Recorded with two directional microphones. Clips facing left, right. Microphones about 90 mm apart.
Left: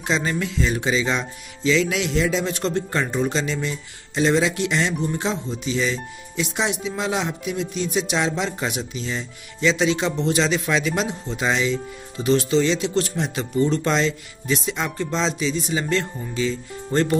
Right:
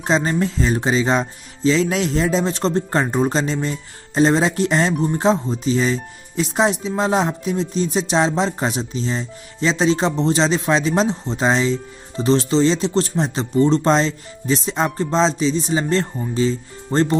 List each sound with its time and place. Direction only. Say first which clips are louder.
0.0 s speech: right 5 dB; 35° right (ahead or behind)